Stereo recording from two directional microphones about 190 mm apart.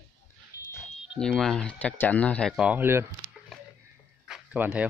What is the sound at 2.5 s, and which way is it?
Speech, 5° right (ahead or behind).